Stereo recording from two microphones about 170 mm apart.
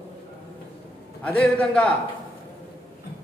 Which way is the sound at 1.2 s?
5° left (ahead or behind).